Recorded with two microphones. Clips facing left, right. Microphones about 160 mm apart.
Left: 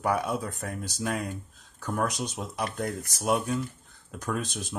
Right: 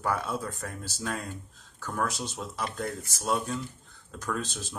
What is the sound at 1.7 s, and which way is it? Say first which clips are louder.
Speech: left 2 dB; 15° left (ahead or behind).